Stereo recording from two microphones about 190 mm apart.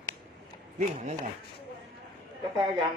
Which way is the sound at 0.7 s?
45° right (ahead or behind).